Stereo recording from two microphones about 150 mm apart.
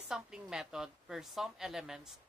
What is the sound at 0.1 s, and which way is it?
A woman's voice, 5° right (ahead or behind).